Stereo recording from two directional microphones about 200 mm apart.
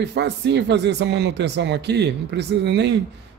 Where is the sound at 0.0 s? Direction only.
60° right (ahead or behind).